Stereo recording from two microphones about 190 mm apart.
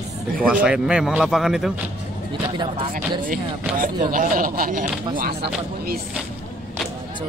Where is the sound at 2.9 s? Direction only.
45° right (ahead or behind).